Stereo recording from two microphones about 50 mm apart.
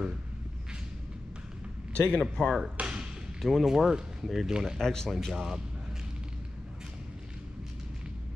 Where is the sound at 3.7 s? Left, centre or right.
Centre.